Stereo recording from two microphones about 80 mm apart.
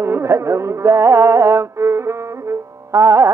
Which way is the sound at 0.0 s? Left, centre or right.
Right.